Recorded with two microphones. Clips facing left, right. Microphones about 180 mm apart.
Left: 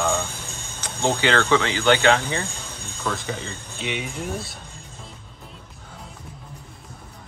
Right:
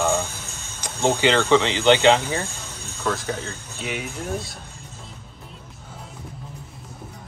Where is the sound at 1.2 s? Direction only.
15° right (ahead or behind).